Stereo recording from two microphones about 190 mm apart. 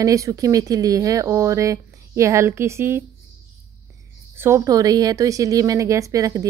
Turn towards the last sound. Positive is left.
turn(degrees=-20)  # may be behind; listen again after turning